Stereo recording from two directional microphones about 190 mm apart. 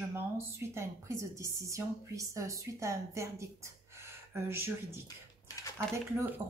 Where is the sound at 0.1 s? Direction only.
15° right (ahead or behind).